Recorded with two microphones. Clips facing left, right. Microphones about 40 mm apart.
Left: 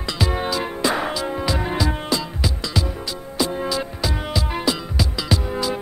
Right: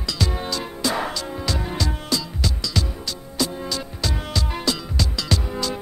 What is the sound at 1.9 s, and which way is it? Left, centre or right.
Music, left.